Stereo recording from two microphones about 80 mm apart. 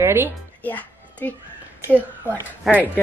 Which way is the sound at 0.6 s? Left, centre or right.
Left.